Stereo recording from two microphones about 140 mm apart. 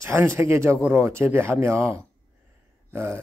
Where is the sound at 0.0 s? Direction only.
20° right (ahead or behind).